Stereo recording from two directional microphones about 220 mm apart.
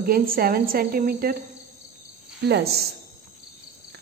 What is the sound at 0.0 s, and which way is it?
Speech, 40° right (ahead or behind).